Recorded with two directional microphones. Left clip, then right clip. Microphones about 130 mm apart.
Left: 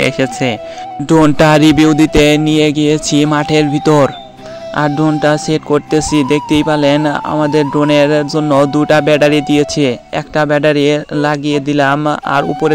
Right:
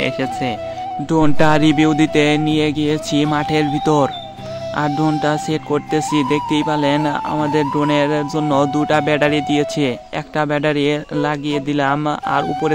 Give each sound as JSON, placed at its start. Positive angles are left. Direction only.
{"t": 0.0, "sound": "speech", "side_deg": 65}